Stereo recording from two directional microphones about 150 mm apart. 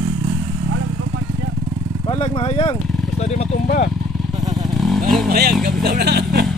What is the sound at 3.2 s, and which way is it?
Speech, 50° left (ahead or behind).